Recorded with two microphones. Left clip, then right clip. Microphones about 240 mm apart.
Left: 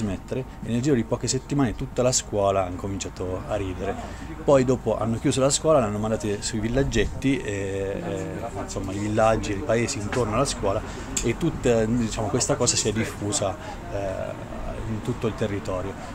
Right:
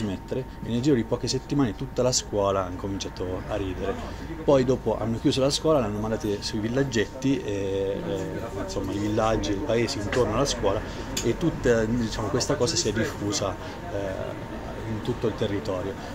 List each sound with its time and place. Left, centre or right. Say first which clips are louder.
0.1 s speech: even; left
8.9 s speech: left 4 dB; left
15.3 s speech: even; left